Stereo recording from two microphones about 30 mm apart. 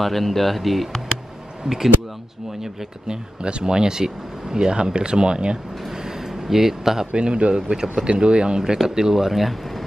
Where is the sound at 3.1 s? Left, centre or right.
Right.